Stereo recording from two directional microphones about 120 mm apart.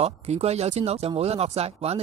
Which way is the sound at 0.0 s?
60° right (ahead or behind).